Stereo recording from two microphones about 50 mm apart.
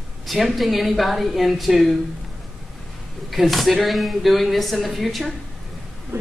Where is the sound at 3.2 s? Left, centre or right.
Centre.